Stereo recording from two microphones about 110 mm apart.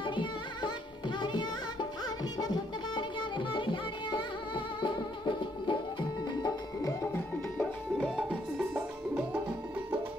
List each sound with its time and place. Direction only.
0.0 s music: 45° left (ahead or behind); by 7.2 s 25° left (ahead or behind)
8.0 s music: 10° right (ahead or behind)